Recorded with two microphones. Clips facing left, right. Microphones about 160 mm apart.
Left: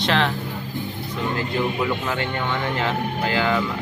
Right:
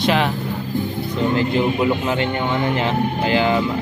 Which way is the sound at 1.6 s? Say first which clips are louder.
Right 5 dB; 20° right (ahead or behind).